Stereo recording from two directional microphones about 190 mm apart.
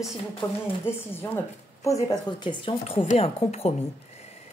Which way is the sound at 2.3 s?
25° left (ahead or behind).